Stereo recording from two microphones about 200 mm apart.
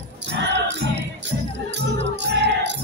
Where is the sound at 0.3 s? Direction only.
60° right (ahead or behind).